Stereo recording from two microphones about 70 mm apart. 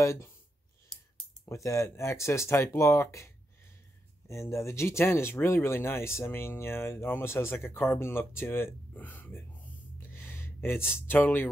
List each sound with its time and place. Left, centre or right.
0.0 s speech: left
1.4 s speech: left
4.3 s speech: left
10.1 s a sound: left
11.1 s speech: left